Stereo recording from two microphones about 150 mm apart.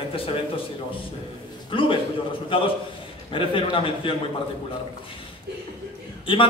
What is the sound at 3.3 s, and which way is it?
Speech, 35° left (ahead or behind).